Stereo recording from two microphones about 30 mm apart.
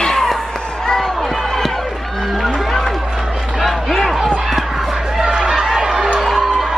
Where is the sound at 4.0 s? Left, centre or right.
Centre.